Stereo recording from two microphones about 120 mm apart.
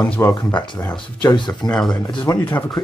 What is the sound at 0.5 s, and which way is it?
Speech, 35° left (ahead or behind).